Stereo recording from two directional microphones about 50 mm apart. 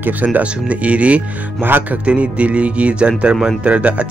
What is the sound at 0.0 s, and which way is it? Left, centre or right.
Speech, right.